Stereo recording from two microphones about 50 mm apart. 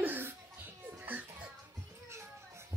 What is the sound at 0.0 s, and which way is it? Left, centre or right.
Children playing, right.